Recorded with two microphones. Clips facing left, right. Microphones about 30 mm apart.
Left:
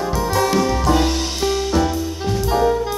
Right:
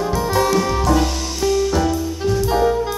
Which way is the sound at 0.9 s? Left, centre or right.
Left.